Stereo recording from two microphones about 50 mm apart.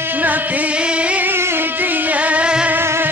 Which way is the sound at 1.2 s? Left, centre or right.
Right.